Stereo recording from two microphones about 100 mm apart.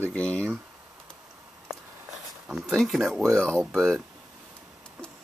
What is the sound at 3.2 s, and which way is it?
Speech, 25° right (ahead or behind).